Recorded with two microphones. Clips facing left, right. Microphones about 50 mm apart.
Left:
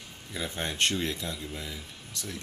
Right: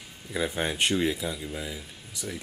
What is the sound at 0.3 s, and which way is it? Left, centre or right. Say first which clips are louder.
Speech: right 5 dB; centre.